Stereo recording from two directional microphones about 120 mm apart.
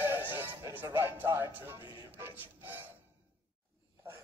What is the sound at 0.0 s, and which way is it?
Music, 15° right (ahead or behind).